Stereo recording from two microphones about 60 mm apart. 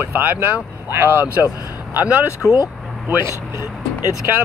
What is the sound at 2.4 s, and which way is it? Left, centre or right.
Speech, left.